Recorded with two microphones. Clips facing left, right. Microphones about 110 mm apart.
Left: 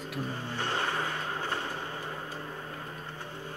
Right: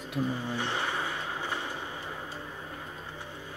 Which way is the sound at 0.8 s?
10° right (ahead or behind).